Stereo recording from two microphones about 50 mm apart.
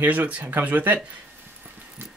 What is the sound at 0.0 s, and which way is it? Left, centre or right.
Speech, right.